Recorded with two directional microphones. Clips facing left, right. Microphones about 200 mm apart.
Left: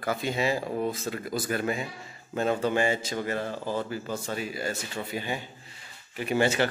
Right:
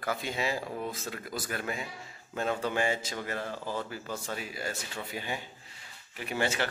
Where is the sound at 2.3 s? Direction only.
15° left (ahead or behind).